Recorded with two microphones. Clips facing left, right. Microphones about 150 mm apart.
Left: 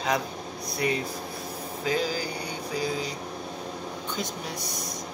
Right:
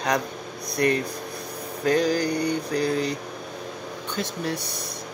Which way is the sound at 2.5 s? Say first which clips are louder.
Right 6 dB; 65° right (ahead or behind).